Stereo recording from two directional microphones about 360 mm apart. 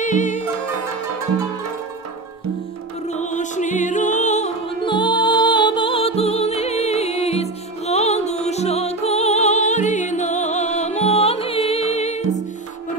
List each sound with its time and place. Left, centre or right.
0.0 s music: left
3.1 s music: centre